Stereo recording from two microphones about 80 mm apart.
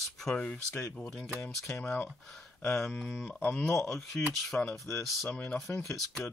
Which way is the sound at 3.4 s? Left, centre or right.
Centre.